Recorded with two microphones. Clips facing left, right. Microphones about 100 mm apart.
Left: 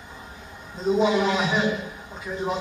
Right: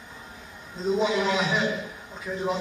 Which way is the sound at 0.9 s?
10° left (ahead or behind).